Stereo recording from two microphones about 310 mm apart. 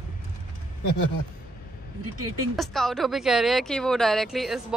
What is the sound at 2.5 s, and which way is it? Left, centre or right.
Speech, centre.